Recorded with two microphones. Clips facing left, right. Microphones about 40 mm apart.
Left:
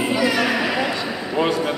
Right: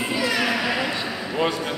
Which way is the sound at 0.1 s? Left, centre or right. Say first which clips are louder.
Left 4 dB; centre.